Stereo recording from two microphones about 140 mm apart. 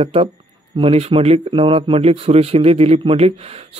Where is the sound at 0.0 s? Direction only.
45° right (ahead or behind).